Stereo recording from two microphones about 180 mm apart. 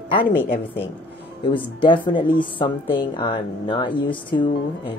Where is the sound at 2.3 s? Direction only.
25° left (ahead or behind).